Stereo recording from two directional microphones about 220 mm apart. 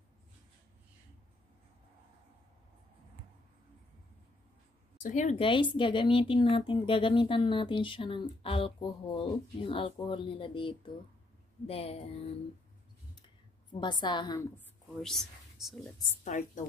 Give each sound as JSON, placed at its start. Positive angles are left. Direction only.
{"t": 5.0, "sound": "speech", "side_deg": 35}
{"t": 13.7, "sound": "speech", "side_deg": 20}
{"t": 15.0, "sound": "speech", "side_deg": 0}
{"t": 16.3, "sound": "a woman's voice", "side_deg": 35}